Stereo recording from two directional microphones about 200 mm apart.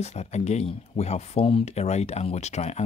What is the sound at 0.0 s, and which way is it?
Speech, 35° left (ahead or behind).